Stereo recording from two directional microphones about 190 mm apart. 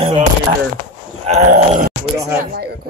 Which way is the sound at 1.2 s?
35° right (ahead or behind).